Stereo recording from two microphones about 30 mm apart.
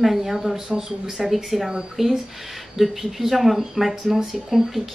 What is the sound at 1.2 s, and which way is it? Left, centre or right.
Speech, centre.